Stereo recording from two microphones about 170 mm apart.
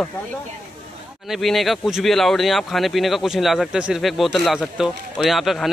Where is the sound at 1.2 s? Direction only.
Centre (ahead or behind).